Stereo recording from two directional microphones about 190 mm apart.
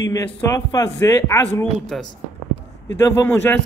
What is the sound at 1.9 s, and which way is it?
Speech, centre (ahead or behind).